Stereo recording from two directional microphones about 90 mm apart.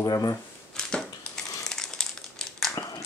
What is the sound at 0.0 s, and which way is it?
Speech, 45° left (ahead or behind).